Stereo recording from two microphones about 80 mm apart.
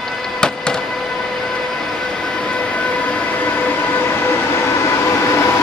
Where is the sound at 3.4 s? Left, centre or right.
Left.